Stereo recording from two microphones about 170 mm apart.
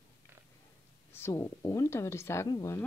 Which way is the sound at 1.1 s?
15° left (ahead or behind).